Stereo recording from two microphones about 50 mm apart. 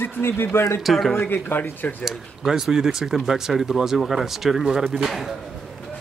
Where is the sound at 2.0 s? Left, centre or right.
Centre.